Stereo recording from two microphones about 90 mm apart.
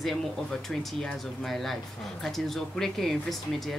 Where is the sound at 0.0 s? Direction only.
5° left (ahead or behind).